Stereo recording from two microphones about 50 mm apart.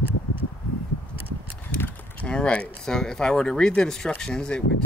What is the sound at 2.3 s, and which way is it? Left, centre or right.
Speech, left.